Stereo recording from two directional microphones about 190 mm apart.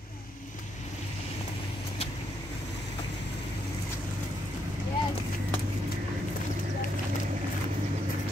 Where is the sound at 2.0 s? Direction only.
35° left (ahead or behind).